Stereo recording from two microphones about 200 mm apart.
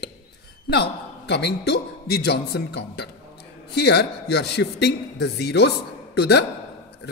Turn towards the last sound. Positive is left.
turn(degrees=55)  # may be behind; listen again after turning